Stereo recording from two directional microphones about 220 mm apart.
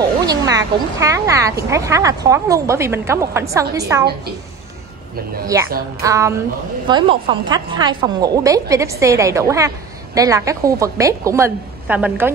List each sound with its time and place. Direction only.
0.3 s speech: 15° right (ahead or behind)
5.5 s speech: 15° right (ahead or behind)